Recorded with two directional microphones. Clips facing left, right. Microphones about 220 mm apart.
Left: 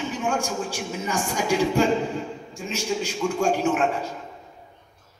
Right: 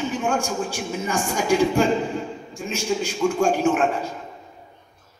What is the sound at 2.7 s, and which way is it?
A man's voice, 50° right (ahead or behind).